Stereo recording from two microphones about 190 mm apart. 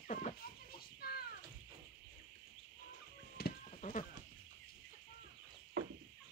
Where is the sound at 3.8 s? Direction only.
40° left (ahead or behind).